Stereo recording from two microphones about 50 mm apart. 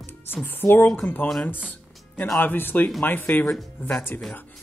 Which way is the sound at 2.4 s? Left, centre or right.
Left.